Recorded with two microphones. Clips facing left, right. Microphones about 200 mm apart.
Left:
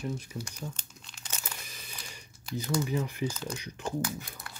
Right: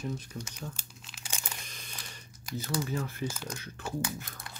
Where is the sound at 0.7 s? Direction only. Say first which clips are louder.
Right 1 dB; 5° right (ahead or behind).